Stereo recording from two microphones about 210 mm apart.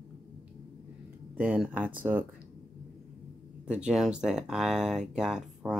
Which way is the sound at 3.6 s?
5° right (ahead or behind).